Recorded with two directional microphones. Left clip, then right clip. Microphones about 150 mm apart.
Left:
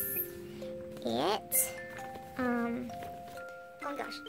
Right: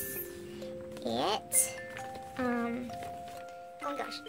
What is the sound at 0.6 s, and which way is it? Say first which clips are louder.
Music: even; 15° left (ahead or behind).